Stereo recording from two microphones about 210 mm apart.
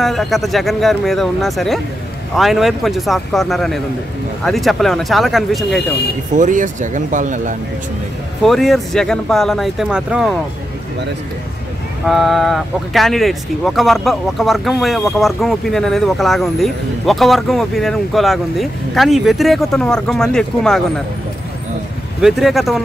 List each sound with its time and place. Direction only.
0.0 s speech: centre (ahead or behind)
6.3 s speech: 35° right (ahead or behind)
8.5 s speech: centre (ahead or behind)
12.1 s speech: centre (ahead or behind)
22.2 s speech: centre (ahead or behind)